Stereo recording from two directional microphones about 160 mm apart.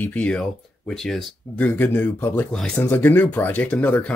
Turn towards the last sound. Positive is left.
turn(degrees=10)  # may be behind; listen again after turning